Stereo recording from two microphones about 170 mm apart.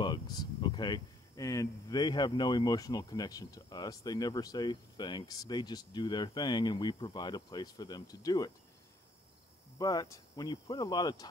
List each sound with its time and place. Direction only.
0.0 s speech: 25° left (ahead or behind)
9.8 s speech: 20° left (ahead or behind)